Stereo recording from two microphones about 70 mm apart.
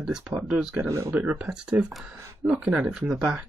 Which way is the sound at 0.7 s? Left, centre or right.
Right.